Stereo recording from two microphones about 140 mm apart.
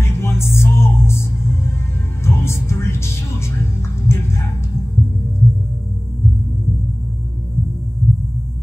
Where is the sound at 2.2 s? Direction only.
20° left (ahead or behind).